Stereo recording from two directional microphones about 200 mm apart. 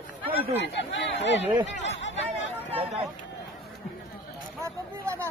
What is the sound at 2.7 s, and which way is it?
Speech, 30° right (ahead or behind).